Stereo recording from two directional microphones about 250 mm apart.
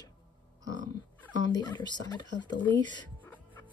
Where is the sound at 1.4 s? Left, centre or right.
Centre.